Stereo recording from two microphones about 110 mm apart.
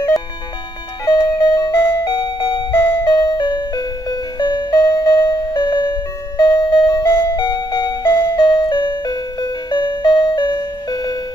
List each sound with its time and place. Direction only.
1.0 s music: 35° left (ahead or behind)